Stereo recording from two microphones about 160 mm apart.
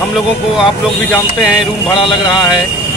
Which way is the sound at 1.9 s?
30° left (ahead or behind).